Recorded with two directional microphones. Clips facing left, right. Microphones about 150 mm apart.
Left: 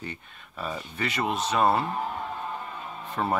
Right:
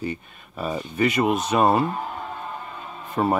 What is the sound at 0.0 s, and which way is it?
Speech, 10° right (ahead or behind).